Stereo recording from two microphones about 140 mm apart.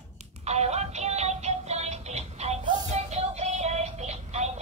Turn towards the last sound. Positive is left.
turn(degrees=-50)  # may be behind; listen again after turning